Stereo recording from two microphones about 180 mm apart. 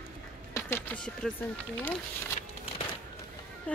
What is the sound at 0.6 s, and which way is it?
Speech, 15° left (ahead or behind).